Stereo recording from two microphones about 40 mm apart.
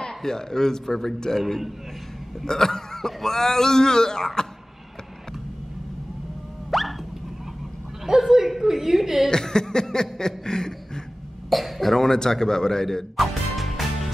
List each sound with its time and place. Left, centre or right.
0.0 s speech: centre
2.4 s speech: centre
6.7 s a sound: centre
8.1 s chuckle: centre
9.3 s a sound: centre
11.5 s speech: centre
13.1 s music: centre